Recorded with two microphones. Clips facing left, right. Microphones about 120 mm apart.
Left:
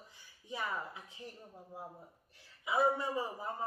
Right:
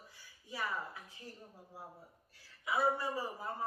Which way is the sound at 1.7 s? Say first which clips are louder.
Left 3 dB; 20° left (ahead or behind).